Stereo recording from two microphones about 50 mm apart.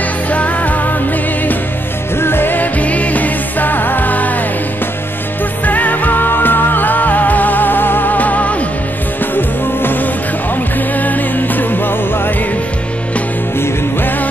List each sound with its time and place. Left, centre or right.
0.3 s music: left
2.1 s music: left
5.7 s music: left
9.2 s music: left